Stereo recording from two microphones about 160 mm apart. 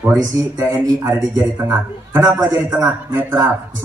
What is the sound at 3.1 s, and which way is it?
Speech, 10° right (ahead or behind).